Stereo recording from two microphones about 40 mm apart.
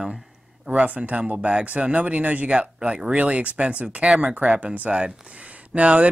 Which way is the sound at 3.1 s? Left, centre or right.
Right.